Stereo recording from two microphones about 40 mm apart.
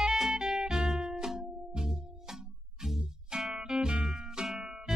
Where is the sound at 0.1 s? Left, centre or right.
Centre.